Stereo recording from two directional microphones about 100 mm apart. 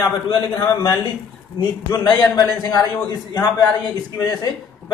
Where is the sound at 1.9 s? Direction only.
35° left (ahead or behind).